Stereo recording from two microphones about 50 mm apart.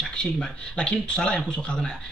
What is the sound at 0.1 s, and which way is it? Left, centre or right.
A man's voice, centre.